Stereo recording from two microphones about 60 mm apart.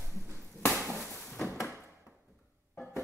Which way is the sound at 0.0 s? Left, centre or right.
Centre.